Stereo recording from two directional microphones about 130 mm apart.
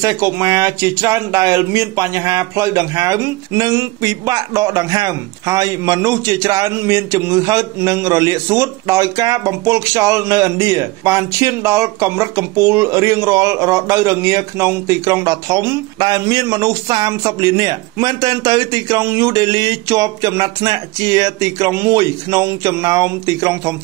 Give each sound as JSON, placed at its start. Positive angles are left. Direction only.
{"t": 0.0, "sound": "speech", "side_deg": -25}